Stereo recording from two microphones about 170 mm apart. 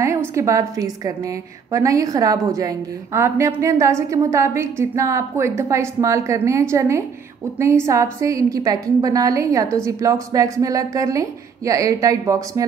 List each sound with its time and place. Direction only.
0.0 s a woman's voice: 15° right (ahead or behind)